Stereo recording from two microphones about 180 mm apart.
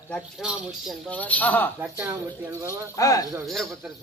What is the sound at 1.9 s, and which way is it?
Speech, 15° right (ahead or behind).